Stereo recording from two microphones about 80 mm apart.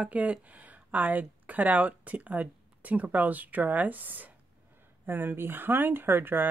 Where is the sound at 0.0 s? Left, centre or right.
Centre.